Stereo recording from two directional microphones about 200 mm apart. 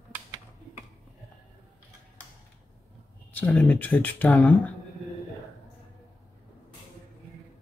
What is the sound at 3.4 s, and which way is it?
Speech, 5° left (ahead or behind).